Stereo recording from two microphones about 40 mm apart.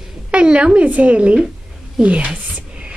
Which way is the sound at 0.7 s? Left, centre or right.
Right.